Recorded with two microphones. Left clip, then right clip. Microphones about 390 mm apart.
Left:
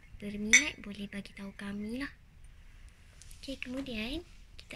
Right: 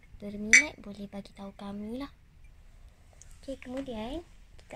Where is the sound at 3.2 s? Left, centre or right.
Centre.